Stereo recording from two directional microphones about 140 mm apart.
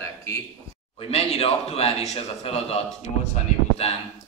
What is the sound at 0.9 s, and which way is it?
A man's voice, 45° left (ahead or behind).